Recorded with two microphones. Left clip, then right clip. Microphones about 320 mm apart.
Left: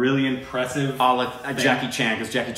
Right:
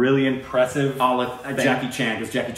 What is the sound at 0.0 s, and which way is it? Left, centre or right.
Speech, centre.